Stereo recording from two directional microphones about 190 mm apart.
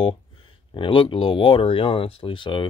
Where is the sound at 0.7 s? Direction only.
25° left (ahead or behind).